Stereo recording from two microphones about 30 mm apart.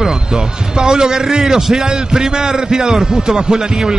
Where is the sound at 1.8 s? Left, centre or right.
Right.